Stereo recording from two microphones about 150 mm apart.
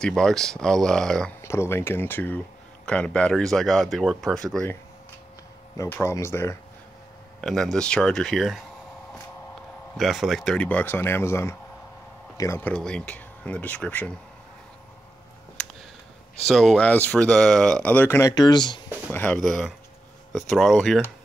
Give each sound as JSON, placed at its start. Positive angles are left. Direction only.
{"t": 0.0, "sound": "speech", "side_deg": 5}
{"t": 1.4, "sound": "speech", "side_deg": 15}
{"t": 5.8, "sound": "speech", "side_deg": 15}
{"t": 7.4, "sound": "speech", "side_deg": 5}
{"t": 9.9, "sound": "speech", "side_deg": 0}
{"t": 16.4, "sound": "speech", "side_deg": 0}
{"t": 19.1, "sound": "speech", "side_deg": 5}